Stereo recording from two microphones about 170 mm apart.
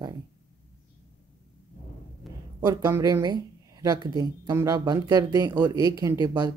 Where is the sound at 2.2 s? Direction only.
Centre (ahead or behind).